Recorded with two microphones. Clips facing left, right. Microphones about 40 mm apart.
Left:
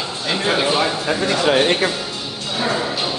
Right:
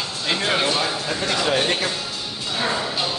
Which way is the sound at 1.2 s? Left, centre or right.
Centre.